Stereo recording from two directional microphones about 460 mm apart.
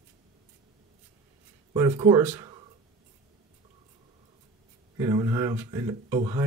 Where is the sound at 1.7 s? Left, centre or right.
Centre.